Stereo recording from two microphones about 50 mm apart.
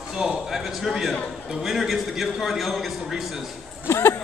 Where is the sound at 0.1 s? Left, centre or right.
Centre.